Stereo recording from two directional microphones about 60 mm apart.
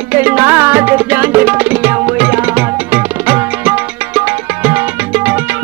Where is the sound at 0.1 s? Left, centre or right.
Right.